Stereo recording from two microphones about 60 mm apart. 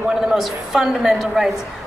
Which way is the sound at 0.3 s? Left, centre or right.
Centre.